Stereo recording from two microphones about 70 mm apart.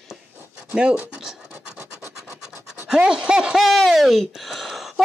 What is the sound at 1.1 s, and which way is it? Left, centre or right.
Speech, centre.